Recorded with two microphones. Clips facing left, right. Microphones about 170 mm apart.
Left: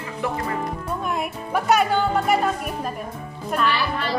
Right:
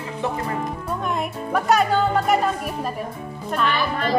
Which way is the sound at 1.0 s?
5° left (ahead or behind).